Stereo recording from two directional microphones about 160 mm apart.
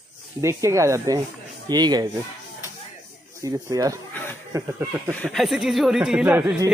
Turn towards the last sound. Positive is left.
turn(degrees=-10)  # may be behind; listen again after turning